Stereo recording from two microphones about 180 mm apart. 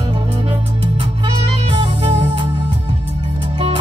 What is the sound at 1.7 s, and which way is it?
Music, 30° right (ahead or behind).